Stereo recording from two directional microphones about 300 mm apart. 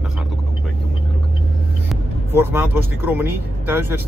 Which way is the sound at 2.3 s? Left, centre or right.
Centre.